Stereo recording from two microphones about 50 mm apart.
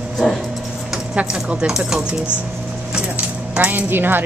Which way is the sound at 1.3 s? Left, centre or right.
Centre.